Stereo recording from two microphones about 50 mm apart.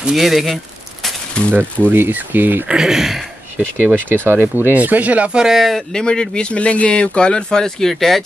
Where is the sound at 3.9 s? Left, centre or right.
Right.